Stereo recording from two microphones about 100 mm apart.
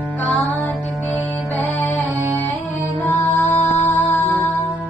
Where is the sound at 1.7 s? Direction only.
20° left (ahead or behind).